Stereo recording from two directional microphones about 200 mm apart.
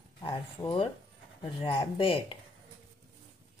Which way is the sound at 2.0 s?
25° left (ahead or behind).